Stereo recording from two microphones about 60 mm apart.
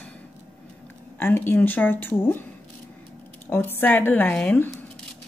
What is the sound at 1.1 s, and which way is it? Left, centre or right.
A woman's voice, left.